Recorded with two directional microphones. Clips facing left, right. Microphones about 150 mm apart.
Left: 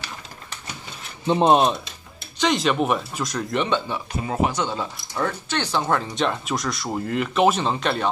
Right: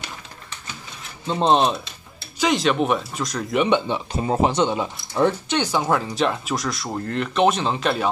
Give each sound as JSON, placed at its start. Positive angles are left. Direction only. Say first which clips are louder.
{"t": 1.2, "sound": "speech", "louder": "left 2 dB", "side_deg": 15}
{"t": 2.3, "sound": "speech", "louder": "right 1 dB", "side_deg": -5}
{"t": 3.6, "sound": "speech", "louder": "right 4 dB", "side_deg": -20}